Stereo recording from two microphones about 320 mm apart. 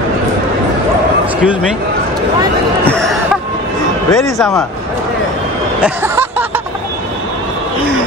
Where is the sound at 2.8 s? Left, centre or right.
Centre.